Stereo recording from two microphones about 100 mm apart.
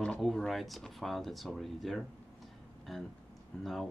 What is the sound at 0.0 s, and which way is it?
Speech, 5° left (ahead or behind).